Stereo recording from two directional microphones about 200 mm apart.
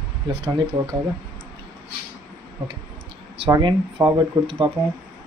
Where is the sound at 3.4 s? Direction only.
20° right (ahead or behind).